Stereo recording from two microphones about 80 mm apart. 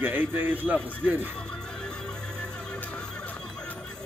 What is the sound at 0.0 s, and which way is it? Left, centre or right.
Speech, right.